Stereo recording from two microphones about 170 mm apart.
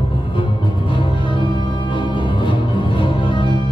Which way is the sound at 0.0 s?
30° left (ahead or behind).